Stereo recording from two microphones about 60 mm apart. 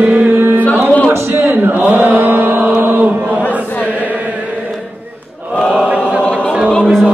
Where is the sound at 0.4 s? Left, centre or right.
Right.